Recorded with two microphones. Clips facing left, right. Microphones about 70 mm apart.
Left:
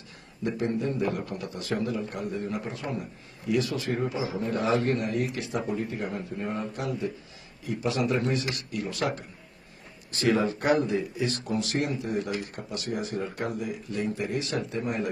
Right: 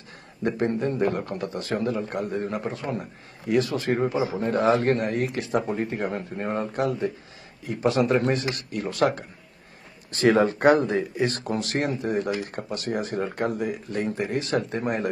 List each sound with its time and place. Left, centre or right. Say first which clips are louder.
0.4 s a man's voice: right 4 dB; right
10.2 s a man's voice: right 6 dB; right